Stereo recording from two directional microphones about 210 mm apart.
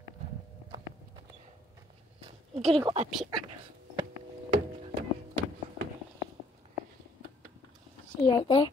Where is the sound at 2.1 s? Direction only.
25° right (ahead or behind).